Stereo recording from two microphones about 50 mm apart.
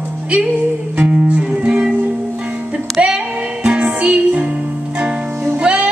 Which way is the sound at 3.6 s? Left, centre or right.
Centre.